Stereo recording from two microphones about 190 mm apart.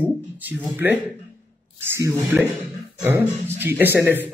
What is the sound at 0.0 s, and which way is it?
A man's voice, 10° right (ahead or behind).